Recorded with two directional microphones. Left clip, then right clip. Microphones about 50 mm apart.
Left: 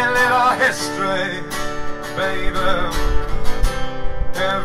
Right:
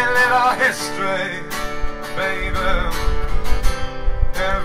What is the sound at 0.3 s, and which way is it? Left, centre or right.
Music, centre.